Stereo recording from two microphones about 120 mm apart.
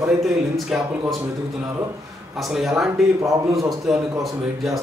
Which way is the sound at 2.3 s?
Centre (ahead or behind).